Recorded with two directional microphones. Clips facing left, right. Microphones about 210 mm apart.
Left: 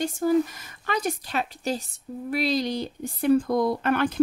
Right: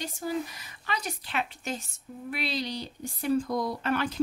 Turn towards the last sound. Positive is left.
turn(degrees=55)  # may be behind; listen again after turning